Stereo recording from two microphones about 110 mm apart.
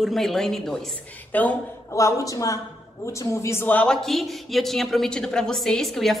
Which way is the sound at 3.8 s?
Centre (ahead or behind).